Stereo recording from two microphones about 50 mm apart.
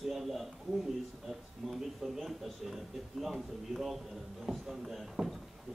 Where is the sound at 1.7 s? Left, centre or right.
Centre.